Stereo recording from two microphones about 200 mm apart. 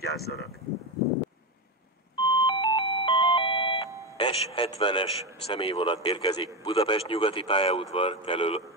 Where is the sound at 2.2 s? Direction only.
25° left (ahead or behind).